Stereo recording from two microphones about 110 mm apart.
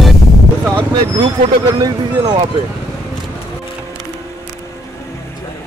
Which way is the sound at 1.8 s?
40° right (ahead or behind).